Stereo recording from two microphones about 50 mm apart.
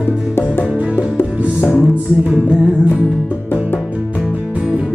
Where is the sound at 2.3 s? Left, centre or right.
Centre.